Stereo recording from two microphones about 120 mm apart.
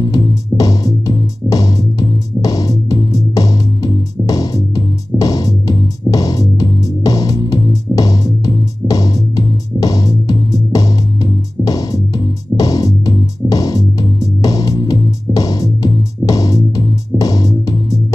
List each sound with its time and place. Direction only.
0.0 s music: 30° left (ahead or behind)